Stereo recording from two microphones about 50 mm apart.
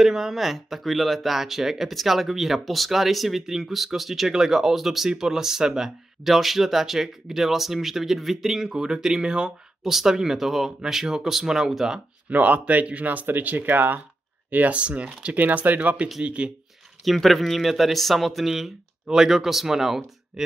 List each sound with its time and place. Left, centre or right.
0.0 s speech: centre
12.3 s speech: right
16.2 s speech: centre
17.0 s speech: centre